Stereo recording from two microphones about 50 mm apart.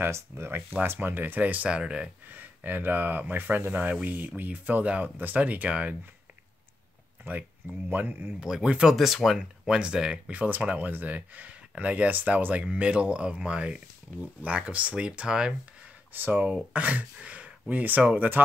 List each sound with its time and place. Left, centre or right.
0.0 s speech: right
0.9 s speech: right
1.7 s speech: right
2.3 s speech: right
7.2 s speech: right
8.4 s speech: centre
9.4 s speech: centre
10.3 s speech: right
12.6 s speech: right
16.1 s speech: right
16.4 s speech: right